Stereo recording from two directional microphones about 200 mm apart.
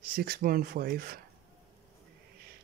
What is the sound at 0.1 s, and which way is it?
Speech, 45° right (ahead or behind).